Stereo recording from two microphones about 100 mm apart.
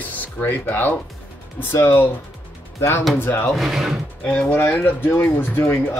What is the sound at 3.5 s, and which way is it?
Speech, centre (ahead or behind).